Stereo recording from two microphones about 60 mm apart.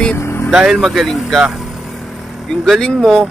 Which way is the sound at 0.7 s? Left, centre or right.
Centre.